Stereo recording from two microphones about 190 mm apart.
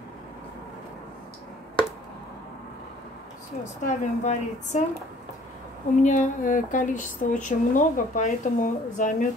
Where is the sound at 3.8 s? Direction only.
40° left (ahead or behind).